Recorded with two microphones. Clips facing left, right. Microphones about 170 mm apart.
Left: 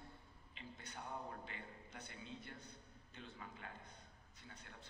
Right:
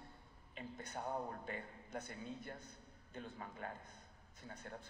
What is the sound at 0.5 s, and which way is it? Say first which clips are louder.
A man's voice: right 7 dB; 45° right (ahead or behind).